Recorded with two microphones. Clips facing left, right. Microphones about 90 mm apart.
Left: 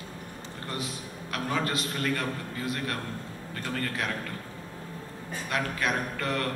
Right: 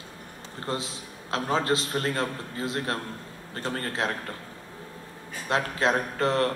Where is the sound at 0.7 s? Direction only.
25° right (ahead or behind).